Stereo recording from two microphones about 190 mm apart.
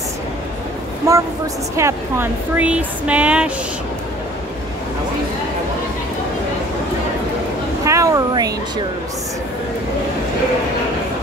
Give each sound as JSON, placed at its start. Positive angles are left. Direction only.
{"t": 1.1, "sound": "speech", "side_deg": -15}
{"t": 7.8, "sound": "speech", "side_deg": -15}